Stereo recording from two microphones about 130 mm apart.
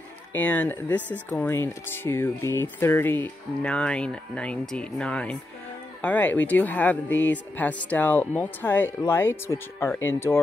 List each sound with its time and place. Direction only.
0.3 s speech: 10° left (ahead or behind)